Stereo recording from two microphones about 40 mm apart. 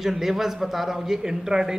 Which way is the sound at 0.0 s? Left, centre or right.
Centre.